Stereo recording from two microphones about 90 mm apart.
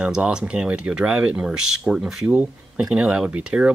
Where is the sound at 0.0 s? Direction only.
10° right (ahead or behind).